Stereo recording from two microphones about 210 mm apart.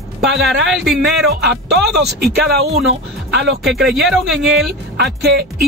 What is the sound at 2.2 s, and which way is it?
Speech, 50° right (ahead or behind).